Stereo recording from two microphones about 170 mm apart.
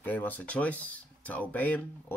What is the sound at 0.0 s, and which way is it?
Speech, 10° left (ahead or behind).